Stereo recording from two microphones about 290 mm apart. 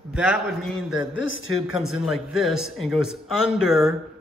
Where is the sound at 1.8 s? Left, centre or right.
Centre.